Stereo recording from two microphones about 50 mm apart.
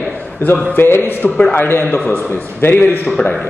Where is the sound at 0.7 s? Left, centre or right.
Left.